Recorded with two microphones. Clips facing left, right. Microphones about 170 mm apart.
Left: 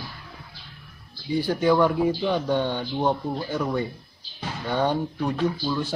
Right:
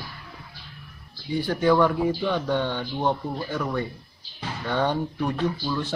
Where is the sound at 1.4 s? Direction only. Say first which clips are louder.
Even; 10° left (ahead or behind).